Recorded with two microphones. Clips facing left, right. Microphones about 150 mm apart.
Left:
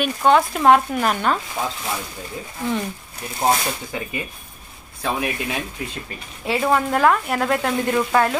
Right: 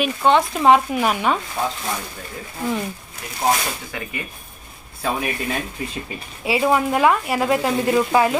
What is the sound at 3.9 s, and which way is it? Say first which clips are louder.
Speech: left 2 dB; 25° left (ahead or behind).